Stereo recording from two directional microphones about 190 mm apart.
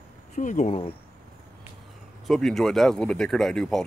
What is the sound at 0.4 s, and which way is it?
Speech, 40° left (ahead or behind).